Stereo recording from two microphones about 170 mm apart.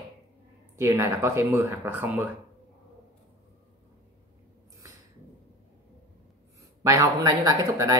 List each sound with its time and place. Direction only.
0.7 s speech: 15° right (ahead or behind)
6.8 s speech: 20° right (ahead or behind)